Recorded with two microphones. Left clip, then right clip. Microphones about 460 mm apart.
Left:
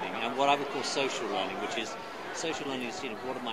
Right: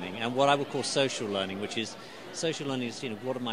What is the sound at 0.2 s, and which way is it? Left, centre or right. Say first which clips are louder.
Speech: right 2 dB; right.